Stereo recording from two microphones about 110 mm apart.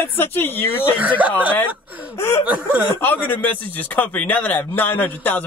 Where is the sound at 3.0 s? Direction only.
20° left (ahead or behind).